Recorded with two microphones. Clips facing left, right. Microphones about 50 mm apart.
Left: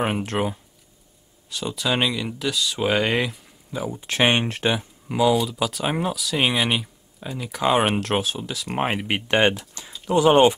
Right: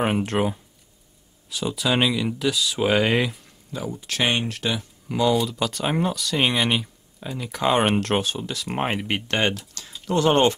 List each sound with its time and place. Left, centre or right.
0.0 s speech: centre
3.7 s speech: centre
4.1 s speech: left
5.0 s speech: centre